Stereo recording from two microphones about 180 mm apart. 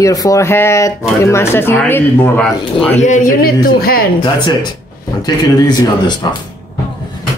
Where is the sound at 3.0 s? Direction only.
45° left (ahead or behind).